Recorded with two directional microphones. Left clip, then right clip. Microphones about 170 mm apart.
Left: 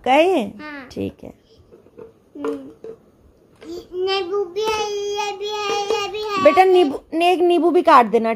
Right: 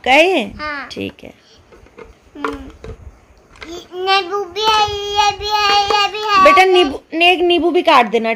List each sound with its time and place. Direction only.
0.0 s speech: 10° left (ahead or behind)
3.7 s child singing: 5° left (ahead or behind)